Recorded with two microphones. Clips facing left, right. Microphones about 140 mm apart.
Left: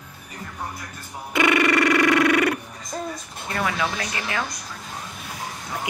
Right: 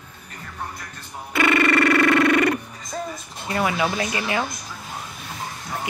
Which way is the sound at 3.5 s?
10° right (ahead or behind).